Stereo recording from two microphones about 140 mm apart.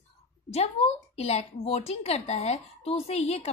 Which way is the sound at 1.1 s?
45° left (ahead or behind).